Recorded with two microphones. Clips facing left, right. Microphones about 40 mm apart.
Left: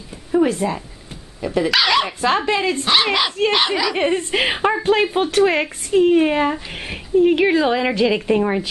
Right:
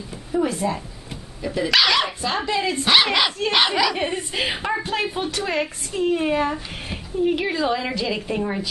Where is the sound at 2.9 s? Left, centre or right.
Centre.